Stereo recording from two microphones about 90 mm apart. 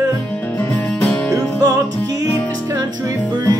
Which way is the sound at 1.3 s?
40° right (ahead or behind).